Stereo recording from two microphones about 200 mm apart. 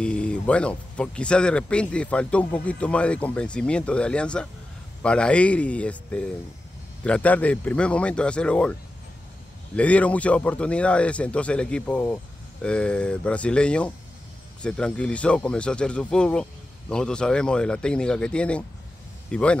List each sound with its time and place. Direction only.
0.0 s speech: 5° left (ahead or behind)
9.8 s a man's voice: 5° left (ahead or behind)